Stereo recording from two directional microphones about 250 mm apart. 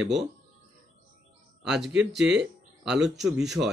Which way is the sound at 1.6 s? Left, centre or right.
Centre.